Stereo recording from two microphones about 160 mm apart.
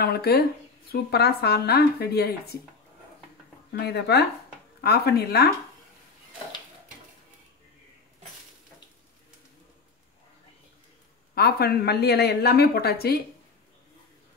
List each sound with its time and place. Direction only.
0.0 s speech: 75° left (ahead or behind)
3.8 s speech: 90° left
11.3 s speech: 80° left